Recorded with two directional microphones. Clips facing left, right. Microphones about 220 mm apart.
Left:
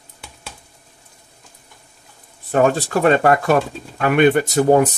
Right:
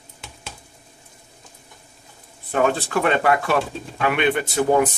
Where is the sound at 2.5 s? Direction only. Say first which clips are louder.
Left 4 dB; 40° left (ahead or behind).